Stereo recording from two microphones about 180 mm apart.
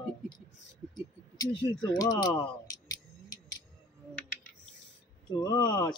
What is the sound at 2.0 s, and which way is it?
Tick, 20° left (ahead or behind).